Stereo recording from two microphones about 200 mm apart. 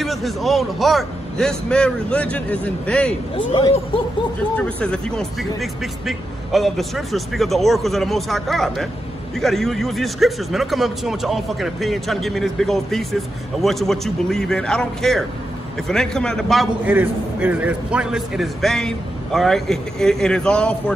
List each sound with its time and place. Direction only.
0.0 s speech: centre (ahead or behind)
3.3 s speech: 25° left (ahead or behind)
4.6 s speech: 5° left (ahead or behind)
16.8 s speech: 10° right (ahead or behind)